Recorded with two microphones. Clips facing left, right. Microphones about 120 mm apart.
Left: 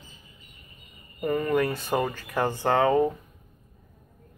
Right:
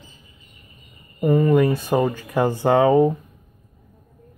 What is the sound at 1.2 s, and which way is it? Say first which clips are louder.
Speech: right 8 dB; 15° right (ahead or behind).